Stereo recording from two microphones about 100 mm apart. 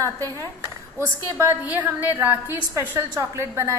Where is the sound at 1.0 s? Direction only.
25° right (ahead or behind).